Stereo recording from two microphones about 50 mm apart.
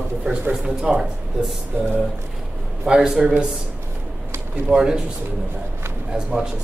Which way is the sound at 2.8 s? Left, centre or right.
Centre.